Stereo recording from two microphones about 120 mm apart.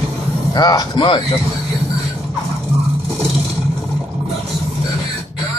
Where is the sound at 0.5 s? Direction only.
35° left (ahead or behind).